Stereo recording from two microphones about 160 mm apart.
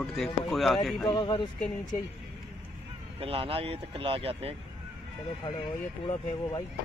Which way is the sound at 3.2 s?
35° right (ahead or behind).